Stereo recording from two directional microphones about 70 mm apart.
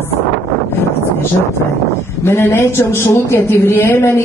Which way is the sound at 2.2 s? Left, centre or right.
Left.